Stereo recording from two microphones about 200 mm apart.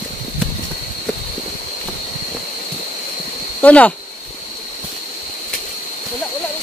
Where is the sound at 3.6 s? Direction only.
5° left (ahead or behind).